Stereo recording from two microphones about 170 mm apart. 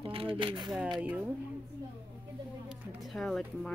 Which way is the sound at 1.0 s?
10° right (ahead or behind).